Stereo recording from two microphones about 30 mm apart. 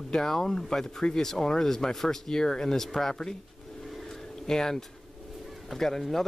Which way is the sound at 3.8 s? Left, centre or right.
Centre.